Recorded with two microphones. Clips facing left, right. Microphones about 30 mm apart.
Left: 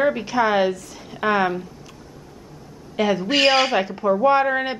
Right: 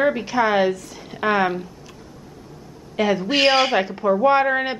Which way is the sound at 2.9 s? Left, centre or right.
Centre.